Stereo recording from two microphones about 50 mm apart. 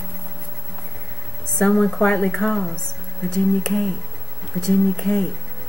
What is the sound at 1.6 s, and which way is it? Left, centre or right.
Speech, centre.